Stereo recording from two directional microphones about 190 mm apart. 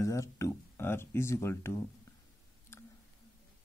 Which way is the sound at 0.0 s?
15° left (ahead or behind).